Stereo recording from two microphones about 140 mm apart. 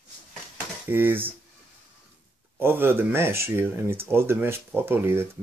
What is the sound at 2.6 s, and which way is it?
Speech, 15° right (ahead or behind).